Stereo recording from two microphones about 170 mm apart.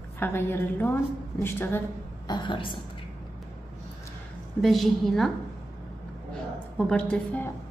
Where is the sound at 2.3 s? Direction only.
30° left (ahead or behind).